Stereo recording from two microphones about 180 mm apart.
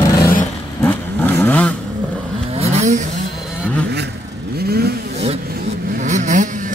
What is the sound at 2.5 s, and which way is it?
Vehicle, 35° right (ahead or behind).